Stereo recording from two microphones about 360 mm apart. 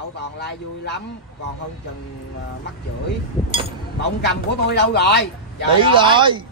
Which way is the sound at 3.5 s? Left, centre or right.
Centre.